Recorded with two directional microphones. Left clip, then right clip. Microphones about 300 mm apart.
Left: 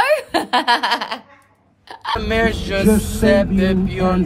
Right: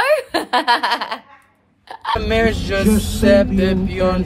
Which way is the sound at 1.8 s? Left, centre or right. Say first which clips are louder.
Right 2 dB; centre.